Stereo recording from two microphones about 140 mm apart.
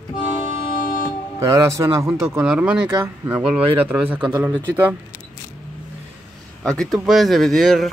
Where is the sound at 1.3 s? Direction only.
20° right (ahead or behind).